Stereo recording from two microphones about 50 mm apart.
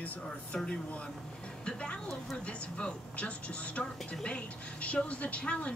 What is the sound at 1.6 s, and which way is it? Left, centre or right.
Music, centre.